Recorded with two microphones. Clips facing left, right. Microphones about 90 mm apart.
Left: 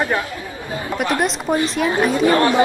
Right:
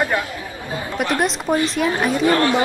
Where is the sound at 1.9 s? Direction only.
15° left (ahead or behind).